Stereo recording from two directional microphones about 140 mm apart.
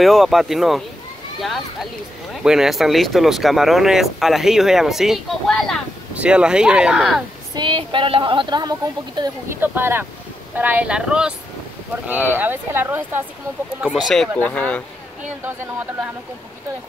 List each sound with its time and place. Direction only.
0.0 s speech: centre (ahead or behind)
6.1 s speech: 10° right (ahead or behind)
7.5 s a woman's voice: 35° right (ahead or behind)
9.6 s speech: 15° right (ahead or behind)
13.8 s speech: 5° right (ahead or behind)